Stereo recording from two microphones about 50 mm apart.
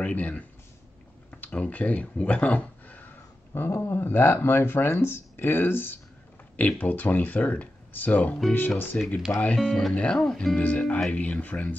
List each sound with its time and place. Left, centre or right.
0.0 s speech: left
1.5 s speech: left
3.5 s speech: left
6.5 s speech: left
9.9 s speech: left
10.2 s speech: centre
10.6 s speech: left